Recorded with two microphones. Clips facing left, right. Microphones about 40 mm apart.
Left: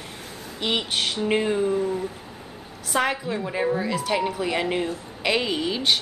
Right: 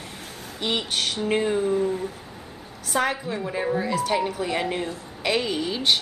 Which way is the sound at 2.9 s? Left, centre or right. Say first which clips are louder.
Left 1 dB; left.